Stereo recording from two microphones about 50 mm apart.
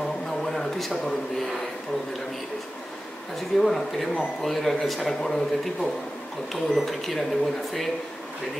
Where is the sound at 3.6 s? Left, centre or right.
Centre.